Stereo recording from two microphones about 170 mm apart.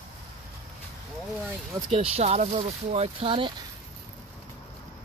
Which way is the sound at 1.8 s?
35° right (ahead or behind).